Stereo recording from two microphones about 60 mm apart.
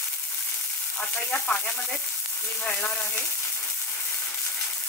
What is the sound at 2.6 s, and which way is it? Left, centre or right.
Speech, centre.